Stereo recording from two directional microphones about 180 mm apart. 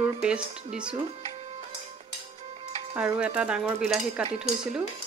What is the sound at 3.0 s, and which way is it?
Speech, 5° right (ahead or behind).